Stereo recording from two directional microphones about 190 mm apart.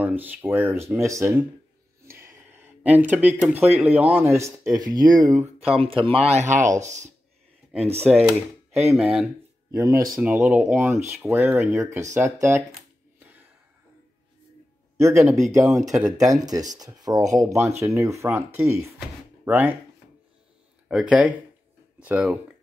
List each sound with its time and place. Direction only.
0.0 s speech: 10° right (ahead or behind)
5.9 s speech: 30° right (ahead or behind)
8.1 s speech: centre (ahead or behind)
9.7 s speech: 15° right (ahead or behind)
10.1 s speech: 5° right (ahead or behind)
15.0 s speech: 15° right (ahead or behind)
15.2 s speech: centre (ahead or behind)
15.5 s speech: 15° right (ahead or behind)
18.9 s drawer open or close: 10° right (ahead or behind)
20.9 s speech: 5° right (ahead or behind)